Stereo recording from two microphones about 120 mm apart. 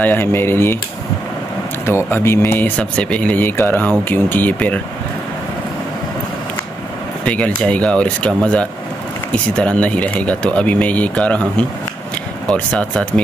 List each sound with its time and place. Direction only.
0.0 s speech: 20° left (ahead or behind)
2.0 s speech: 20° left (ahead or behind)
7.2 s speech: 10° left (ahead or behind)
12.4 s speech: 5° left (ahead or behind)